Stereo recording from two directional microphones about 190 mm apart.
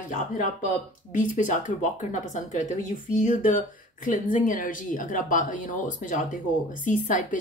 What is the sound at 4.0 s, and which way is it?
Speech, 45° left (ahead or behind).